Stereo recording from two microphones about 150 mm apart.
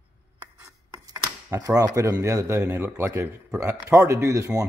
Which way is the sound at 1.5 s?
25° right (ahead or behind).